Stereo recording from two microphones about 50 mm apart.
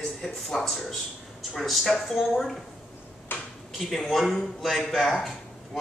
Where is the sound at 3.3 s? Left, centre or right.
Left.